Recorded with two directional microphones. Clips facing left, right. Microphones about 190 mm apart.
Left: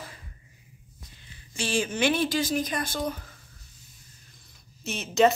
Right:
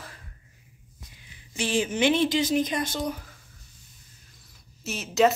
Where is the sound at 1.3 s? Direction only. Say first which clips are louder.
Right 2 dB; 15° right (ahead or behind).